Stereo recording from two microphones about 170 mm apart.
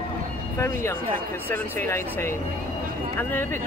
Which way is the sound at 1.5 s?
15° left (ahead or behind).